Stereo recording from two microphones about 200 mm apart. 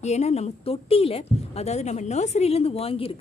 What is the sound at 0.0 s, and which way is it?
A woman's voice, 35° left (ahead or behind).